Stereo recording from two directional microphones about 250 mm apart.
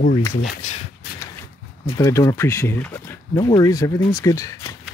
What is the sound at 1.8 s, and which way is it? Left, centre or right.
Speech, centre.